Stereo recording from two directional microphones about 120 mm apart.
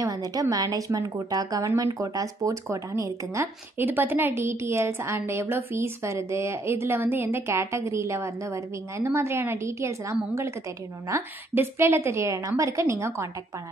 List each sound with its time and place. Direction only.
0.0 s speech: 30° right (ahead or behind)